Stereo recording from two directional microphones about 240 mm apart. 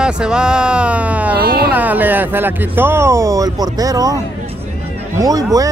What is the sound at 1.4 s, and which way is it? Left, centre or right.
Speech, right.